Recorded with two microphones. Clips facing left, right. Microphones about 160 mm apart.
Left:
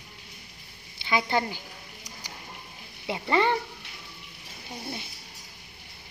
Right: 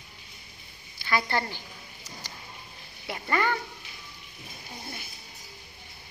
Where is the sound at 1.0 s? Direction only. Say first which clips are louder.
Left 2 dB; 15° left (ahead or behind).